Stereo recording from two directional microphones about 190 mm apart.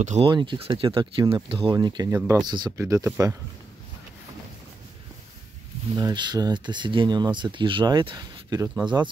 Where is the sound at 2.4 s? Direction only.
20° right (ahead or behind).